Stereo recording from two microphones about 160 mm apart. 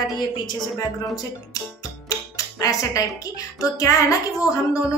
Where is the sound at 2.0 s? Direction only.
20° left (ahead or behind).